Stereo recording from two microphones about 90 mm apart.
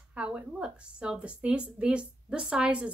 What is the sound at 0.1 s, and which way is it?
A woman's voice, 10° right (ahead or behind).